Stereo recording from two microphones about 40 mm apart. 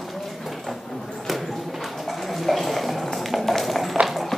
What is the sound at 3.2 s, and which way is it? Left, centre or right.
Tap, centre.